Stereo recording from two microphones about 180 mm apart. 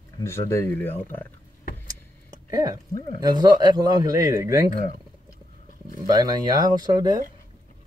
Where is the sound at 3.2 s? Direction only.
20° right (ahead or behind).